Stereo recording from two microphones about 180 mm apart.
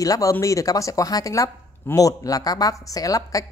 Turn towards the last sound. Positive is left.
turn(degrees=20)  # may be behind; listen again after turning